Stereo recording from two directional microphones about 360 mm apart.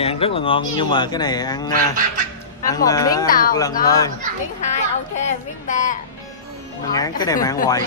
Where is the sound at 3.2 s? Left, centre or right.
Left.